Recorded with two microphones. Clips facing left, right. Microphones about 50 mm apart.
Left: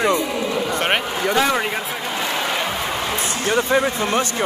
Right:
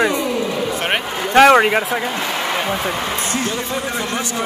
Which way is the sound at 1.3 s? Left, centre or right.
Right.